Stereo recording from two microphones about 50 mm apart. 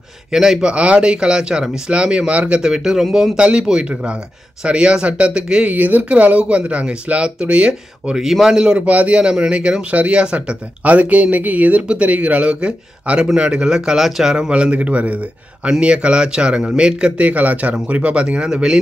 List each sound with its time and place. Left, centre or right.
0.3 s speech: centre
5.7 s speech: right
8.2 s speech: centre
14.3 s speech: right